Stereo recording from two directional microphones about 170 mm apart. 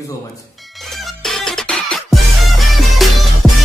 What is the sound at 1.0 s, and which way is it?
Music, centre (ahead or behind).